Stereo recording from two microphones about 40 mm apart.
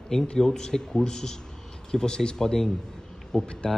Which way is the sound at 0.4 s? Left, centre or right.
Centre.